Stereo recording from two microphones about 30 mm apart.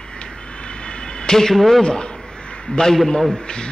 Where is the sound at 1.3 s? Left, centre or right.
Centre.